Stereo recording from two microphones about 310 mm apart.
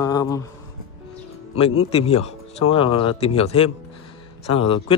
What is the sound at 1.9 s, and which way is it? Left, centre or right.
Speech, centre.